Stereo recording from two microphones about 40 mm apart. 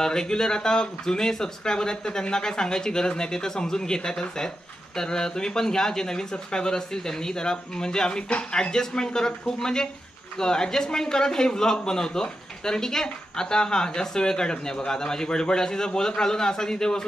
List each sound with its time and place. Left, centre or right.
0.0 s speech: centre